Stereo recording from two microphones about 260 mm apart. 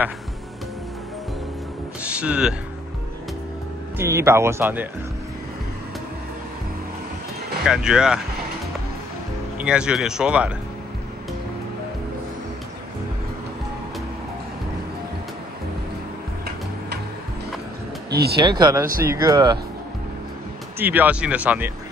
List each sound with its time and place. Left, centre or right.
2.0 s speech: centre
4.0 s speech: centre
7.6 s speech: centre
9.6 s speech: centre
18.1 s speech: right
18.4 s speech: centre
20.8 s speech: centre